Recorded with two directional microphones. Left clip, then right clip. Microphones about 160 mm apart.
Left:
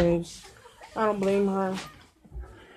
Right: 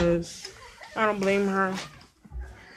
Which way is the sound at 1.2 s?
5° left (ahead or behind).